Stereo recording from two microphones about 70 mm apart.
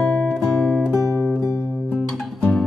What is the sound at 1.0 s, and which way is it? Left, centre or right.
Music, left.